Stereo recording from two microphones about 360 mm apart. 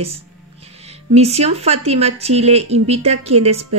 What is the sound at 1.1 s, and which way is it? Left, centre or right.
Speech, centre.